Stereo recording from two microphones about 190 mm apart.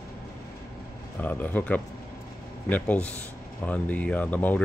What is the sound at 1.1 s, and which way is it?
Speech, 10° left (ahead or behind).